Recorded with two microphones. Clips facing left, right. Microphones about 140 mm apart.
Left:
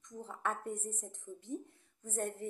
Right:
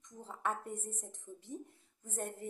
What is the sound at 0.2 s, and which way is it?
Speech, 20° right (ahead or behind).